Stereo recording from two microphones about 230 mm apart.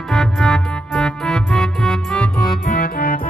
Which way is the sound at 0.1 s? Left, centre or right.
Centre.